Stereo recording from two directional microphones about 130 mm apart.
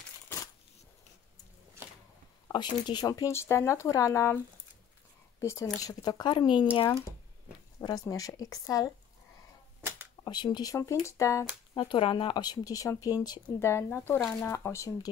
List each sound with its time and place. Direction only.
2.5 s speech: 35° left (ahead or behind)
5.4 s speech: 20° left (ahead or behind)
7.8 s speech: 30° left (ahead or behind)
9.8 s a sound: 20° right (ahead or behind)
10.2 s speech: 35° left (ahead or behind)
11.7 s speech: 40° left (ahead or behind); by 15.0 s 20° left (ahead or behind)